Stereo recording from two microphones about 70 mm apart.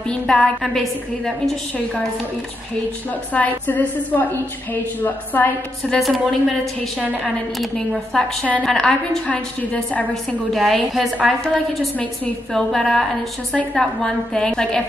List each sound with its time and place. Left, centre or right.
0.1 s speech: centre
0.6 s a woman's voice: centre
3.3 s a woman's voice: left
5.9 s a woman's voice: centre
9.3 s a woman's voice: centre
10.5 s a woman's voice: centre
12.5 s a woman's voice: centre